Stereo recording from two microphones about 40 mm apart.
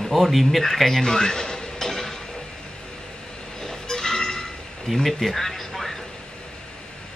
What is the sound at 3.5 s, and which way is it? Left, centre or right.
Music, centre.